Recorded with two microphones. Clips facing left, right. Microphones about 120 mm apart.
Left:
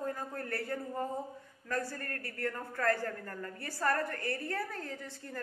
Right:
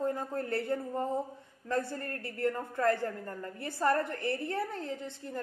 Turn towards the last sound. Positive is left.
turn(degrees=-20)  # may be behind; listen again after turning